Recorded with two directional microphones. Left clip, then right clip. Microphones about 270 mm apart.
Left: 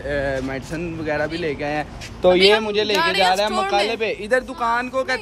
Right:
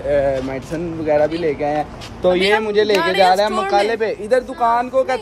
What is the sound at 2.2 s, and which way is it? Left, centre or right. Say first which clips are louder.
Speech: left 1 dB; centre.